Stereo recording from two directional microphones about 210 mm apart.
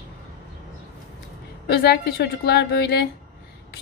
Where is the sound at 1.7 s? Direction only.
50° left (ahead or behind).